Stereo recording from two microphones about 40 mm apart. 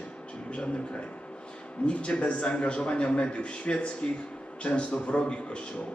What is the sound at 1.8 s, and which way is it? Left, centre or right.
A man's voice, left.